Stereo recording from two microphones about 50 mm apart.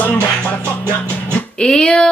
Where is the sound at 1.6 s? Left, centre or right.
Centre.